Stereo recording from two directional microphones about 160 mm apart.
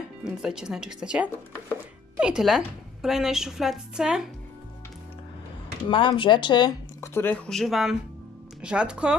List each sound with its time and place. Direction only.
0.2 s a woman's voice: 5° right (ahead or behind)
5.9 s speech: 30° left (ahead or behind)
7.0 s a woman's voice: 15° left (ahead or behind); by 9.1 s 5° right (ahead or behind)